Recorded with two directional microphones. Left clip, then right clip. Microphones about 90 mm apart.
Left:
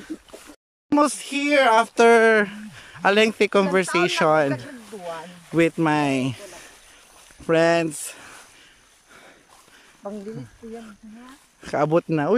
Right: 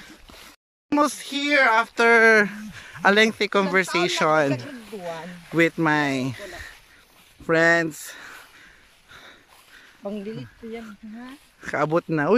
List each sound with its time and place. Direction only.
0.9 s speech: 15° left (ahead or behind)
1.7 s speech: 30° left (ahead or behind)
2.2 s speech: 5° left (ahead or behind)
4.6 s a sound: centre (ahead or behind)
5.6 s speech: 10° left (ahead or behind)
10.0 s speech: 45° right (ahead or behind)
11.6 s speech: 20° left (ahead or behind)